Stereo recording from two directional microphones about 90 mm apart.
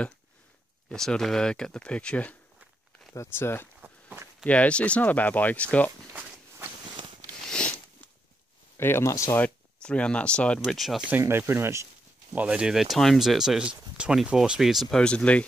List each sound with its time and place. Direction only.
0.8 s speech: 5° left (ahead or behind)
3.2 s speech: 25° left (ahead or behind)
3.8 s walk: 20° right (ahead or behind)
4.5 s speech: 15° left (ahead or behind)
7.4 s a sound: 10° left (ahead or behind)
8.7 s speech: 25° left (ahead or behind)
9.4 s speech: 10° left (ahead or behind)
10.6 s speech: centre (ahead or behind)
11.1 s speech: 25° right (ahead or behind)
12.4 s speech: 10° right (ahead or behind)
15.0 s speech: 10° left (ahead or behind)